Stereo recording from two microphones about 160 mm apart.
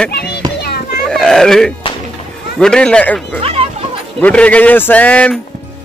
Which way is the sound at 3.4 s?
40° right (ahead or behind).